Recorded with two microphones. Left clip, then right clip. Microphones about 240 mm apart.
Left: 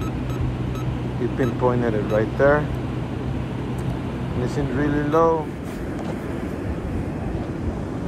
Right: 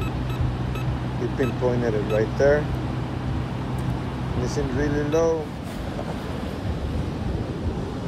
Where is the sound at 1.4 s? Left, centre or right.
Left.